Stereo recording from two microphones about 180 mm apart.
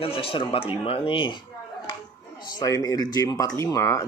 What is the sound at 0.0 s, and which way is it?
Speech, 30° left (ahead or behind).